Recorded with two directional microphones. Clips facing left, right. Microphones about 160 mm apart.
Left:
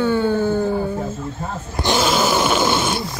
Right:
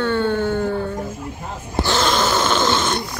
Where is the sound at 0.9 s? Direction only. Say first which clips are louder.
Left 3 dB; 10° right (ahead or behind).